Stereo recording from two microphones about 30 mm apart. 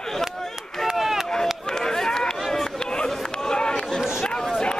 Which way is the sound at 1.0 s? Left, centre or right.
Centre.